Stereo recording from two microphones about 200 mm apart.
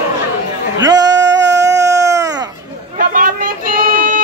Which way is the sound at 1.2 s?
60° right (ahead or behind).